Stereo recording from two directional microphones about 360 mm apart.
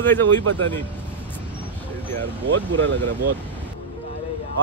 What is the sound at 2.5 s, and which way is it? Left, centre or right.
Speech, right.